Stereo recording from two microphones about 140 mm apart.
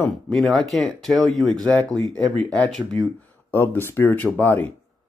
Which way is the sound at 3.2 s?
15° left (ahead or behind).